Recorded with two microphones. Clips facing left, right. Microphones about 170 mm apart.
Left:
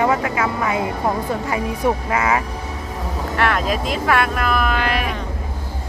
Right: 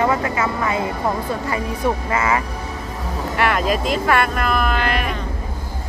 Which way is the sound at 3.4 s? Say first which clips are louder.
Right 1 dB; 5° right (ahead or behind).